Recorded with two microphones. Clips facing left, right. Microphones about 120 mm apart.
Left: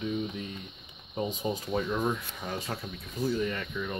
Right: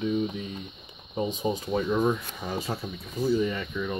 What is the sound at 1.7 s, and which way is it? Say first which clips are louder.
Speech: right 5 dB; 10° right (ahead or behind).